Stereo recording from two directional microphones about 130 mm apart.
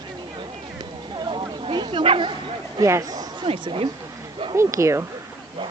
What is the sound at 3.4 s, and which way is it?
Speech, 45° right (ahead or behind).